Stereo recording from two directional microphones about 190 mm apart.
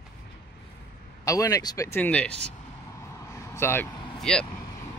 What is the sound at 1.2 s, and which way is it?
Speech, 15° left (ahead or behind).